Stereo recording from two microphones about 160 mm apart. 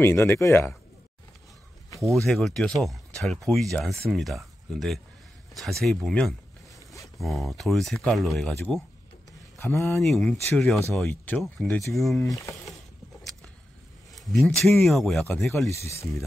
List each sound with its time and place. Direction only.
0.0 s speech: 15° left (ahead or behind)
2.2 s speech: centre (ahead or behind)
9.9 s speech: centre (ahead or behind)
14.1 s speech: centre (ahead or behind)
15.7 s speech: 15° left (ahead or behind)